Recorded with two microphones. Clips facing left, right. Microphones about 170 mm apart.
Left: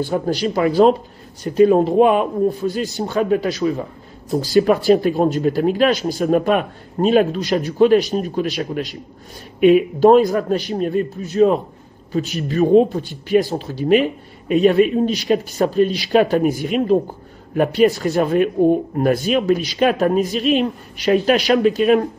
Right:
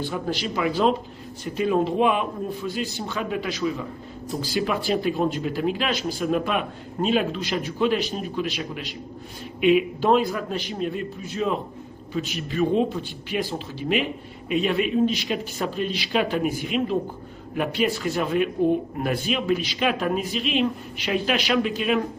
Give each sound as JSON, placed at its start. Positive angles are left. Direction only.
{"t": 0.1, "sound": "speech", "side_deg": 40}